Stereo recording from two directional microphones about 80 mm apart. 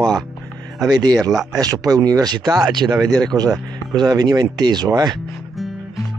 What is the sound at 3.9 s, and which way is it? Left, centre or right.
Speech, right.